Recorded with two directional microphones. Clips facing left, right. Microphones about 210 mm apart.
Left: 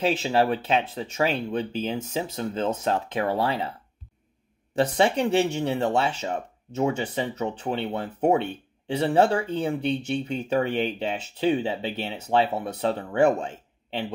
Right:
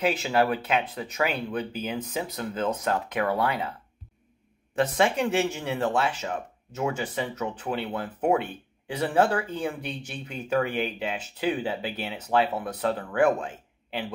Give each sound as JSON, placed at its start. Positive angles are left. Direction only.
{"t": 0.0, "sound": "speech", "side_deg": 25}
{"t": 4.7, "sound": "speech", "side_deg": 30}